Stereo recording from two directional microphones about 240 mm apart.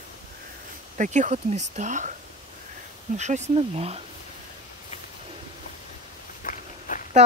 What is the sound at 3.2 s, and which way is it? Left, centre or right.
Speech, right.